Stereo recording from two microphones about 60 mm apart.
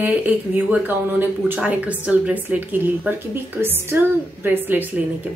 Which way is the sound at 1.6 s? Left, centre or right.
Right.